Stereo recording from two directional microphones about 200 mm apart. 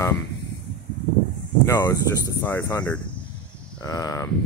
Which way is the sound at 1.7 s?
15° left (ahead or behind).